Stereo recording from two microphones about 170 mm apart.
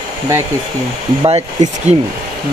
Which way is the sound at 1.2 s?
40° right (ahead or behind).